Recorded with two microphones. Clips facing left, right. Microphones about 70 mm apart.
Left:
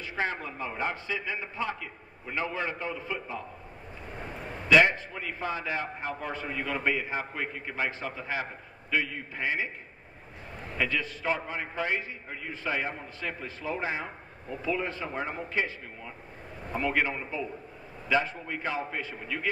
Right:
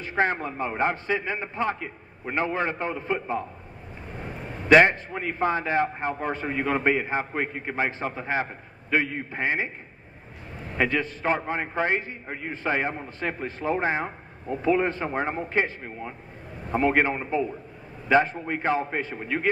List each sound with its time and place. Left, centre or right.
0.0 s a man's voice: right
4.6 s a man's voice: right
10.8 s a man's voice: right